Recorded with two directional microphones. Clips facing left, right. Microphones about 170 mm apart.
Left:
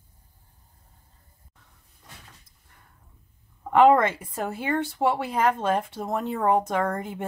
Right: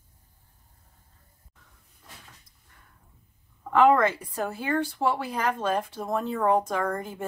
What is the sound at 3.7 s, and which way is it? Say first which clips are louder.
Speech: left 2 dB; 25° left (ahead or behind).